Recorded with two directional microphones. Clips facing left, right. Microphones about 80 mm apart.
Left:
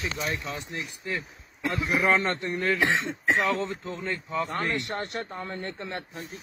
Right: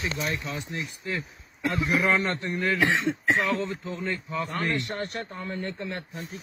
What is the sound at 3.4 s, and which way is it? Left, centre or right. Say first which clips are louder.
A man's voice: even; left.